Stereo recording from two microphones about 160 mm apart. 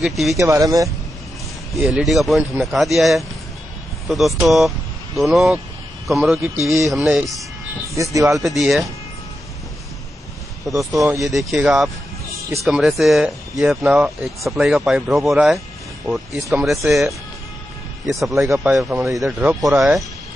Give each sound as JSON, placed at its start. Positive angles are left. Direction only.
{"t": 0.0, "sound": "speech", "side_deg": 0}
{"t": 0.4, "sound": "speech", "side_deg": -20}
{"t": 1.7, "sound": "speech", "side_deg": -5}
{"t": 6.6, "sound": "speech", "side_deg": -20}
{"t": 6.9, "sound": "speech", "side_deg": -5}
{"t": 7.9, "sound": "speech", "side_deg": -20}
{"t": 8.4, "sound": "speech", "side_deg": 0}
{"t": 10.6, "sound": "speech", "side_deg": -20}
{"t": 11.2, "sound": "speech", "side_deg": 0}
{"t": 18.5, "sound": "speech", "side_deg": -15}